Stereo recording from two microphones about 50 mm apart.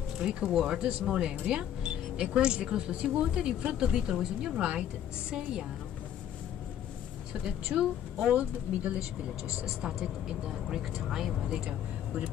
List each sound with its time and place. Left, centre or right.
0.2 s speech: centre
7.4 s speech: centre
8.3 s speech: right
10.0 s speech: centre